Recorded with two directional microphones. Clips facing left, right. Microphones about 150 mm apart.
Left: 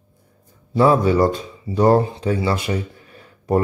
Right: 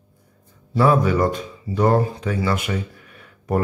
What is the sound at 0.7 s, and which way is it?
Speech, 30° left (ahead or behind).